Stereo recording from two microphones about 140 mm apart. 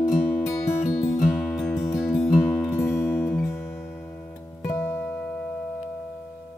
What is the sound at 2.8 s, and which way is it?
Music, 15° left (ahead or behind).